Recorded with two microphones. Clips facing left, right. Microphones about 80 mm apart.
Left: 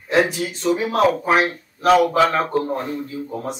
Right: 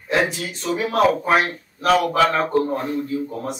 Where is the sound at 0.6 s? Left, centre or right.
Centre.